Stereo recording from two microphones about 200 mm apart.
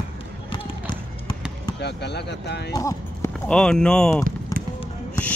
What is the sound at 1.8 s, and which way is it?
Speech, 55° left (ahead or behind).